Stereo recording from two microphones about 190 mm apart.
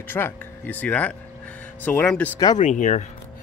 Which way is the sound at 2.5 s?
40° left (ahead or behind).